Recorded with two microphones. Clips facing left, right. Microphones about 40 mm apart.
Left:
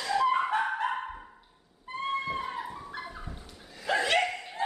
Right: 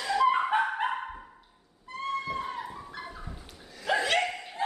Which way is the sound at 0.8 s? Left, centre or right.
Centre.